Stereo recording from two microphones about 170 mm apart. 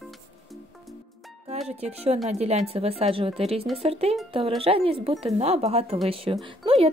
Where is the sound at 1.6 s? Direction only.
40° right (ahead or behind).